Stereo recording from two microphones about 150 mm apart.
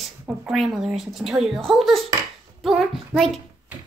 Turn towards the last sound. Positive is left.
turn(degrees=0)  # may be behind; listen again after turning